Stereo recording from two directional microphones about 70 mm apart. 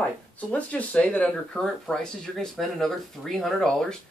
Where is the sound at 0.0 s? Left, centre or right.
Centre.